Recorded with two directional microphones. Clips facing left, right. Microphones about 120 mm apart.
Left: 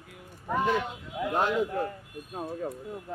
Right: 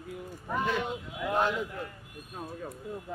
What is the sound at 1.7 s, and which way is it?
Speech, 35° left (ahead or behind).